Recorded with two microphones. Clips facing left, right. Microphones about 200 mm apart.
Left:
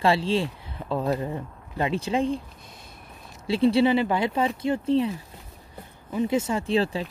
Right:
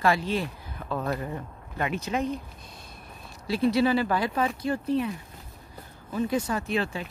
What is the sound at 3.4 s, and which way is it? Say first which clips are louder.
Speech: left 3 dB; 25° left (ahead or behind).